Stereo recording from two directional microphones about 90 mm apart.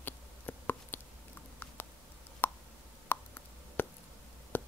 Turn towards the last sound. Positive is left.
turn(degrees=20)  # may be behind; listen again after turning